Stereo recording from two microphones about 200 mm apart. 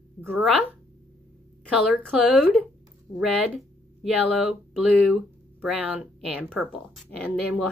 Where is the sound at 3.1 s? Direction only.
Centre (ahead or behind).